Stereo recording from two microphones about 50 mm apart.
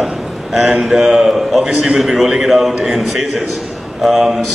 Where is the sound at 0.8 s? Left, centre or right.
Centre.